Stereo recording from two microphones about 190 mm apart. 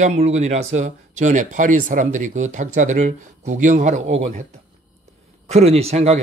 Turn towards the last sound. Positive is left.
turn(degrees=-35)  # may be behind; listen again after turning